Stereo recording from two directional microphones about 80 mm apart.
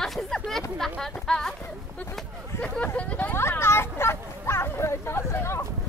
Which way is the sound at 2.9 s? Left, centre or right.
Centre.